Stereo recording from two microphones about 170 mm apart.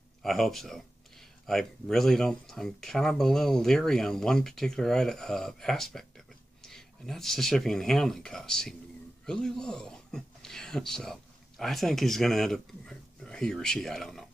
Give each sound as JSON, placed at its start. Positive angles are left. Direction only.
{"t": 0.2, "sound": "speech", "side_deg": 0}